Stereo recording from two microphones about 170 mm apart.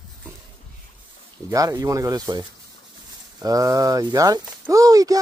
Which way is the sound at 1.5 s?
20° right (ahead or behind).